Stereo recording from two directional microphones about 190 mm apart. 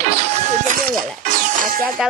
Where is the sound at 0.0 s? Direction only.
35° right (ahead or behind).